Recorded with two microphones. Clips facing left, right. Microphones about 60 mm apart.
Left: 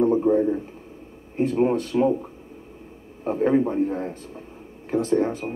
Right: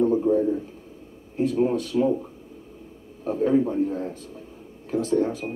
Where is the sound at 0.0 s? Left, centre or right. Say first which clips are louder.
Left 1 dB; left.